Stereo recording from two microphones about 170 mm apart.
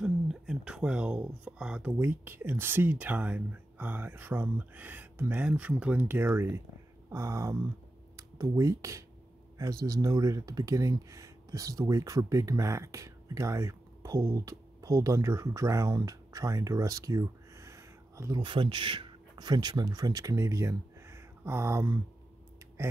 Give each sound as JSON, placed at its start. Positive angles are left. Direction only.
{"t": 0.0, "sound": "speech", "side_deg": -5}
{"t": 18.4, "sound": "speech", "side_deg": -30}